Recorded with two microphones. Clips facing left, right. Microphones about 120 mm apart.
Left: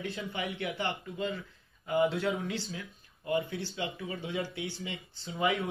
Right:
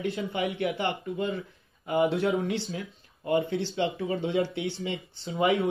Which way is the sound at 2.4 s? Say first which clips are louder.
Right 6 dB; 65° right (ahead or behind).